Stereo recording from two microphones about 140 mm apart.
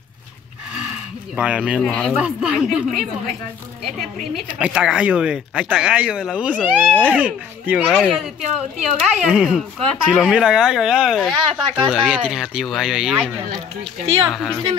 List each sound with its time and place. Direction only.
1.3 s speech: 10° right (ahead or behind)
4.0 s speech: 10° right (ahead or behind)
14.0 s a woman's voice: 40° right (ahead or behind)
14.3 s speech: centre (ahead or behind)